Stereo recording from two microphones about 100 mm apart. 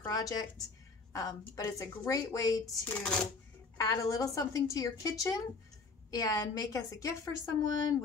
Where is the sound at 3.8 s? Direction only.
35° left (ahead or behind).